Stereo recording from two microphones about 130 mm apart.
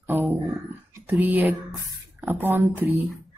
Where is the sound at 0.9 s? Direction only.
15° right (ahead or behind).